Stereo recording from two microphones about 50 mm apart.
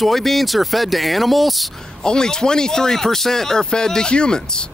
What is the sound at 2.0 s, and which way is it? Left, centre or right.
Speech, centre.